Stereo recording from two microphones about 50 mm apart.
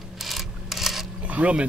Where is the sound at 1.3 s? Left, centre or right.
Right.